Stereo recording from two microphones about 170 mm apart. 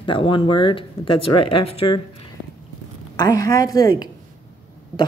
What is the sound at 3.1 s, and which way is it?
Speech, 20° left (ahead or behind).